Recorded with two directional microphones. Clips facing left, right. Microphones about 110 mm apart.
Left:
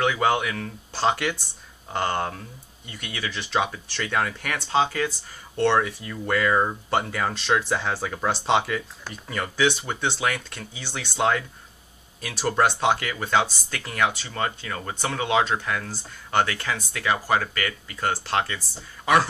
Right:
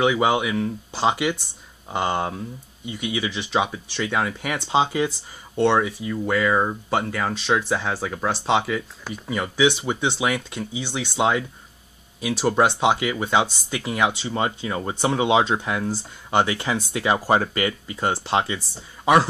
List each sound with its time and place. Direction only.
0.0 s speech: 10° right (ahead or behind)
4.6 s speech: 20° right (ahead or behind)